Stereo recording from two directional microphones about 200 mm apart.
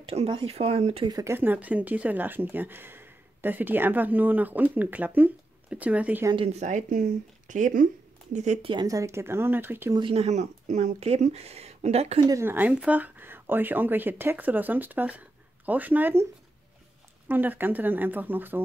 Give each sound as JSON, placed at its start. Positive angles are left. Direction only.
{"t": 0.0, "sound": "speech", "side_deg": -30}
{"t": 1.1, "sound": "speech", "side_deg": -15}
{"t": 6.3, "sound": "speech", "side_deg": -30}
{"t": 8.7, "sound": "speech", "side_deg": -15}
{"t": 9.9, "sound": "speech", "side_deg": -30}
{"t": 12.3, "sound": "speech", "side_deg": -10}
{"t": 17.3, "sound": "speech", "side_deg": -10}